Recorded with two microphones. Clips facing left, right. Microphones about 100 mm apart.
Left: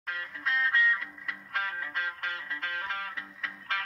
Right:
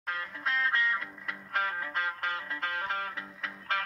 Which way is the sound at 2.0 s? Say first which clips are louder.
Right 2 dB; 35° right (ahead or behind).